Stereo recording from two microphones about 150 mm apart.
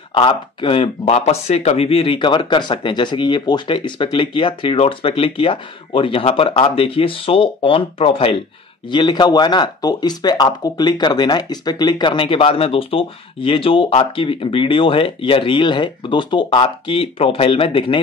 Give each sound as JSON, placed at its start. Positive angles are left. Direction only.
{"t": 0.1, "sound": "speech", "side_deg": 35}